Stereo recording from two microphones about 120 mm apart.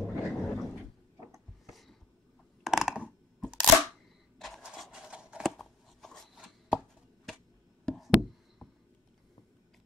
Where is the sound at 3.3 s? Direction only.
5° right (ahead or behind).